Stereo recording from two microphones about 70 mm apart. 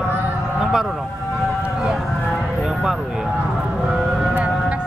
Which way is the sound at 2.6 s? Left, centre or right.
Centre.